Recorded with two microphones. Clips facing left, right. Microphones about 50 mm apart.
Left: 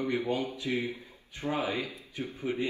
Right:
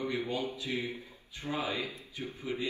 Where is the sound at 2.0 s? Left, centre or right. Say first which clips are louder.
Left 3 dB; left.